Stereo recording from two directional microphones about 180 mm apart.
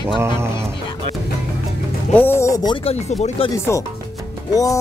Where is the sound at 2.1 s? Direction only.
15° left (ahead or behind); by 3.5 s 35° left (ahead or behind).